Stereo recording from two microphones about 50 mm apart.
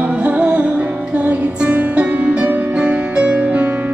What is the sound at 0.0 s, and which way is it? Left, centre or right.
Music, right.